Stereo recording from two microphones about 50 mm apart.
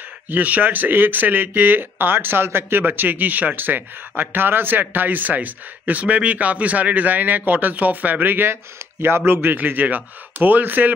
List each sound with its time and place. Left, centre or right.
0.3 s speech: right
2.8 s speech: right